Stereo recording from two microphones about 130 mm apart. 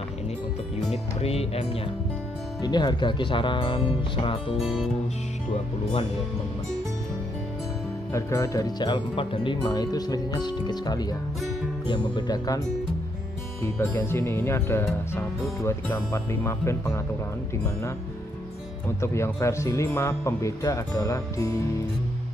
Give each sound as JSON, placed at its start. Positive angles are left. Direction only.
{"t": 1.2, "sound": "speech", "side_deg": 50}
{"t": 2.6, "sound": "speech", "side_deg": 35}
{"t": 4.6, "sound": "music", "side_deg": -5}
{"t": 8.1, "sound": "speech", "side_deg": 25}
{"t": 13.7, "sound": "speech", "side_deg": 20}
{"t": 18.9, "sound": "speech", "side_deg": 20}